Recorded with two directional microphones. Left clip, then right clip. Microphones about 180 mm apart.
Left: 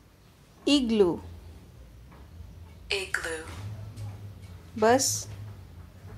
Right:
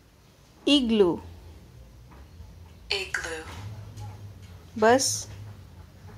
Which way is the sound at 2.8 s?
10° left (ahead or behind).